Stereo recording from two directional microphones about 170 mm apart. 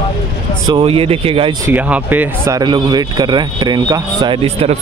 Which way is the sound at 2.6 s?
25° right (ahead or behind).